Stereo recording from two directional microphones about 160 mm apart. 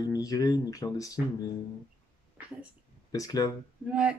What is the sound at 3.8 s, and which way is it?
Speech, 5° right (ahead or behind).